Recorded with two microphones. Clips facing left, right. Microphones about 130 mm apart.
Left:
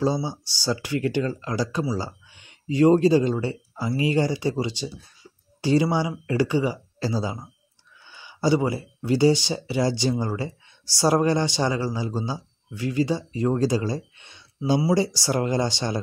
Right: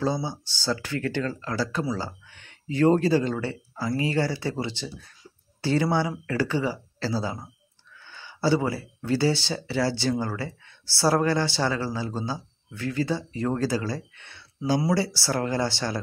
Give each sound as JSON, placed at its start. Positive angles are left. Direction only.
{"t": 0.0, "sound": "speech", "side_deg": 15}